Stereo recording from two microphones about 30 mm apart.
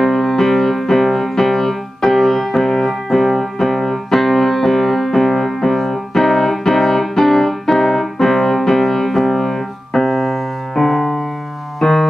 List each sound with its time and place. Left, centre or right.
0.0 s music: centre